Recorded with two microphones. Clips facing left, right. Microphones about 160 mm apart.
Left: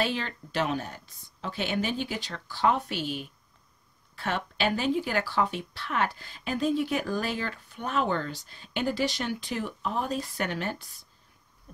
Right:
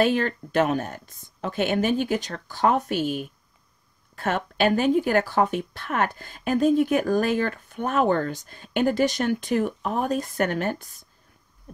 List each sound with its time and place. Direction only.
0.0 s speech: 50° right (ahead or behind)